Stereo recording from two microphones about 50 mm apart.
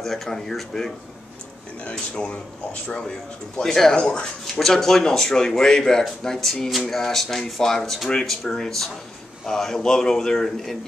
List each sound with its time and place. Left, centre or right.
0.0 s speech: centre
1.8 s speech: left
4.0 s speech: left
4.6 s speech: centre